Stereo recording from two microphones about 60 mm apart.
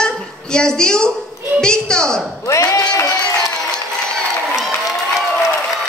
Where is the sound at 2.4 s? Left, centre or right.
Left.